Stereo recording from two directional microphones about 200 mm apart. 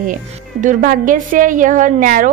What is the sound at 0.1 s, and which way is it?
A woman's voice, 40° right (ahead or behind).